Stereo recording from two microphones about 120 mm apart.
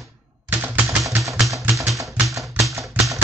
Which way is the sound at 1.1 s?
25° right (ahead or behind).